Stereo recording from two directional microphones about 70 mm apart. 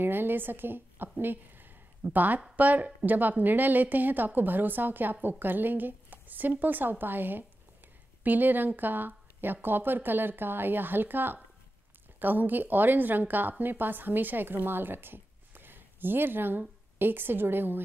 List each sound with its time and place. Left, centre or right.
0.0 s a woman's voice: right